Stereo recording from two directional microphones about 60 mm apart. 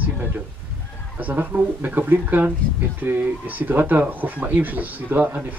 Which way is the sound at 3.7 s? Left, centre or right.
Right.